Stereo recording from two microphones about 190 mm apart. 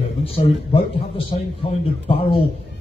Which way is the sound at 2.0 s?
30° left (ahead or behind).